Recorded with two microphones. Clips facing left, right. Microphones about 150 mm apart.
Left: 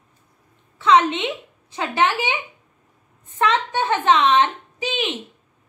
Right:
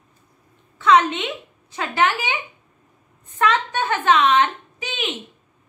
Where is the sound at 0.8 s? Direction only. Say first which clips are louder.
Even; 25° left (ahead or behind).